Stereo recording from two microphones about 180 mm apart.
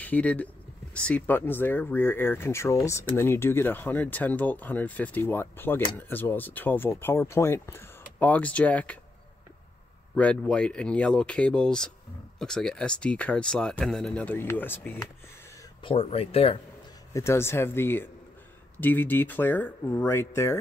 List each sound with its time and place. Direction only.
0.0 s speech: 10° left (ahead or behind)
10.1 s speech: 5° left (ahead or behind)
15.8 s speech: 30° left (ahead or behind)
17.1 s speech: 15° left (ahead or behind)